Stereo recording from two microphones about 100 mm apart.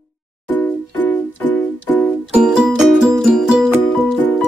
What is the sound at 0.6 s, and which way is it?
Music, 20° left (ahead or behind).